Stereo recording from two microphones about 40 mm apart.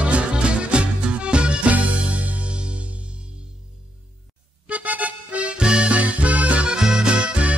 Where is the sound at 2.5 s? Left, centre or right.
Right.